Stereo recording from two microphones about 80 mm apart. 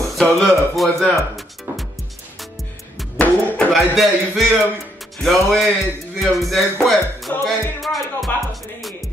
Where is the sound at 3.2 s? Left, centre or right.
Centre.